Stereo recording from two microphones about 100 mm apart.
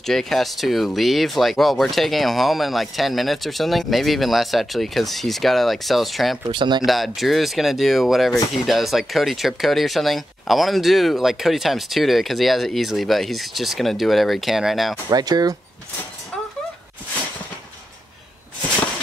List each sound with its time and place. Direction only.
0.0 s speech: centre (ahead or behind)
6.5 s speech: 50° right (ahead or behind)
6.8 s speech: centre (ahead or behind)
15.0 s speech: 40° right (ahead or behind)